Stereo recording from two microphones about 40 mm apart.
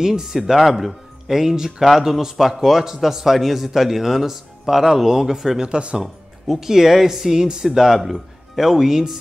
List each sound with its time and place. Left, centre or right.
0.0 s a man's voice: centre
5.7 s speech: right
6.4 s a man's voice: centre